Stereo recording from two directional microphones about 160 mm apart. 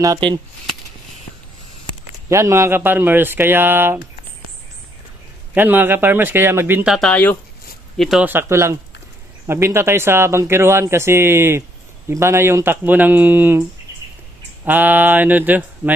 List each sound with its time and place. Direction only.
0.0 s speech: 25° right (ahead or behind)
2.2 s speech: 15° right (ahead or behind)
5.5 s speech: 10° right (ahead or behind)
6.9 s speech: 5° left (ahead or behind)
8.0 s speech: 5° right (ahead or behind)